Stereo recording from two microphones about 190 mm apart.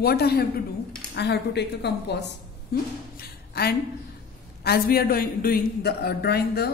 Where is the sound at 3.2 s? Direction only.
55° left (ahead or behind).